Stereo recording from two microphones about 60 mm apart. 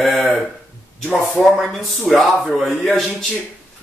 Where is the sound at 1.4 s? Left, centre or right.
Centre.